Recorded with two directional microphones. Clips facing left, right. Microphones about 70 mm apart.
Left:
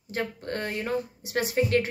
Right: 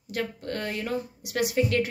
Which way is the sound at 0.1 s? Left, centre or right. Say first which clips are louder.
Even; left.